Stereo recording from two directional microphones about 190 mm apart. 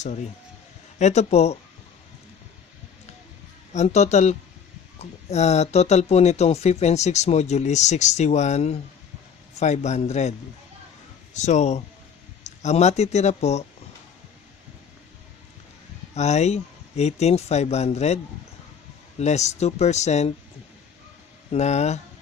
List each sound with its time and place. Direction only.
0.0 s speech: 40° left (ahead or behind)
3.7 s speech: 35° left (ahead or behind)
11.3 s speech: 35° left (ahead or behind)
16.2 s speech: 35° left (ahead or behind)
21.5 s speech: 35° left (ahead or behind)